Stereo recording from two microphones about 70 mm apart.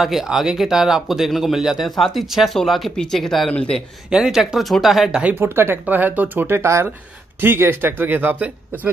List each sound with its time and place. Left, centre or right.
0.0 s speech: centre
4.1 s speech: centre
5.3 s speech: right